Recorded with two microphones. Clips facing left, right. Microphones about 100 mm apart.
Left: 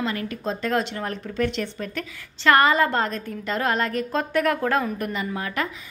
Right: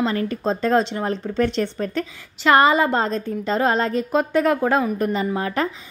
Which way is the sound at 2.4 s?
20° right (ahead or behind).